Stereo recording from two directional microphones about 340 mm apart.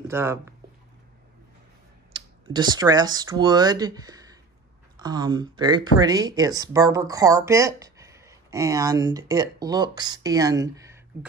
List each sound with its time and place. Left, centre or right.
0.1 s speech: centre
2.1 s speech: centre